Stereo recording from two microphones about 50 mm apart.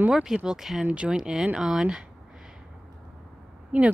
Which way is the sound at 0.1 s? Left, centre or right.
Centre.